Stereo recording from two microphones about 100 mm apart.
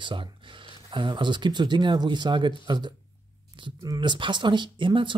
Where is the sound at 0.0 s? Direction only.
55° right (ahead or behind).